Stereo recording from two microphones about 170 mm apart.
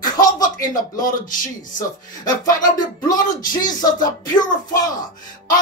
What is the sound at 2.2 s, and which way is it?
Speech, 20° left (ahead or behind).